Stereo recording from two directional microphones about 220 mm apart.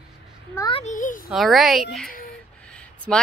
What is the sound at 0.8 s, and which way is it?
Speech, 35° left (ahead or behind).